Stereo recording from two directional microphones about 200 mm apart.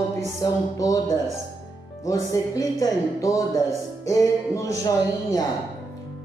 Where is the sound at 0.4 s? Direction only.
15° left (ahead or behind).